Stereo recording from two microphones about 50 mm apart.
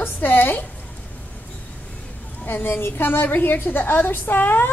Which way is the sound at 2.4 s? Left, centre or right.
Left.